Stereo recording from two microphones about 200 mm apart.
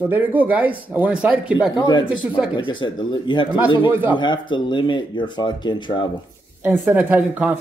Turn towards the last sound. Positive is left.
turn(degrees=-10)  # may be behind; listen again after turning